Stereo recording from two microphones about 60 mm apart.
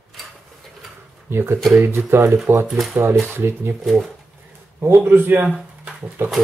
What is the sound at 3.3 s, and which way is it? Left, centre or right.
Speech, right.